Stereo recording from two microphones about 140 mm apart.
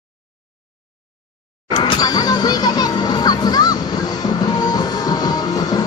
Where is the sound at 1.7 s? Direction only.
30° left (ahead or behind).